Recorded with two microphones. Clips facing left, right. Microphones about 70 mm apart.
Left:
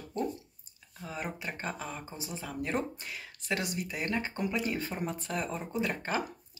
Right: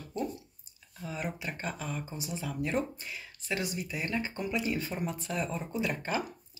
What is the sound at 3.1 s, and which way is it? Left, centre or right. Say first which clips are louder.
Speech: left 1 dB; left.